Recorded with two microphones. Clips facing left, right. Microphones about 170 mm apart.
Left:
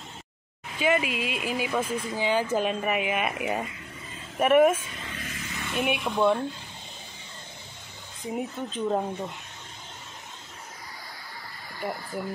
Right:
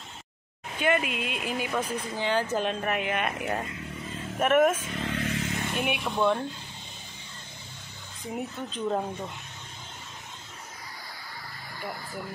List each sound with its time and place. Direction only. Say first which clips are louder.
0.7 s speech: left 1 dB; centre (ahead or behind)
5.0 s vehicle: right 8 dB; 60° right (ahead or behind)
5.8 s speech: left 3 dB; centre (ahead or behind)
8.3 s speech: left 3 dB; 5° left (ahead or behind)